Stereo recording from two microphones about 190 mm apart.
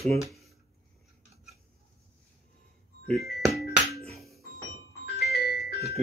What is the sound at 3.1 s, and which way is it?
Speech, 55° left (ahead or behind).